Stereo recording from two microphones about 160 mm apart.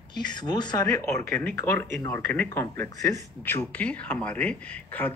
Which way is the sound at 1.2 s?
10° left (ahead or behind).